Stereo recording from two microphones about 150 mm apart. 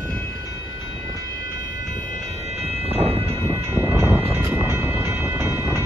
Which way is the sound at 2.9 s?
40° right (ahead or behind).